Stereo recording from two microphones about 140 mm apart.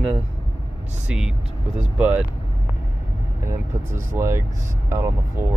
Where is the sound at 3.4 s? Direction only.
20° right (ahead or behind).